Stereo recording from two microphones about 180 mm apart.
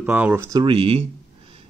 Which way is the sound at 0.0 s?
10° right (ahead or behind).